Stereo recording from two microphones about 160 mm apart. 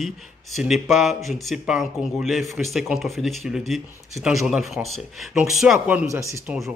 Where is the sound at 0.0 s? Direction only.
Centre (ahead or behind).